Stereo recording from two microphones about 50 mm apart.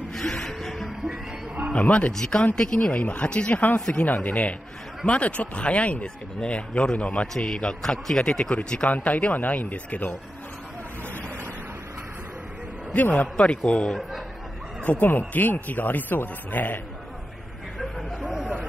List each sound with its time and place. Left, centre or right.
0.1 s a sound: centre
1.7 s speech: left
2.1 s a man's voice: centre
2.9 s speech: left
7.3 s a man's voice: centre
8.9 s speech: left
12.9 s speech: left
14.9 s speech: left
18.2 s speech: centre